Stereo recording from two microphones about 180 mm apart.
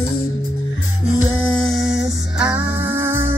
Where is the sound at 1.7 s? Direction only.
Centre (ahead or behind).